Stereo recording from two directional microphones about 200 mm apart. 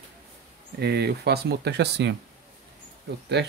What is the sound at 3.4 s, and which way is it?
Speech, 60° right (ahead or behind).